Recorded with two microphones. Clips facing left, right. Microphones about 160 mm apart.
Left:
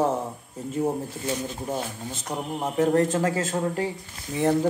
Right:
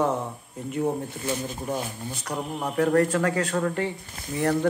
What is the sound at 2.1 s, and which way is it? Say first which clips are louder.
A man's voice: left 1 dB; 20° left (ahead or behind).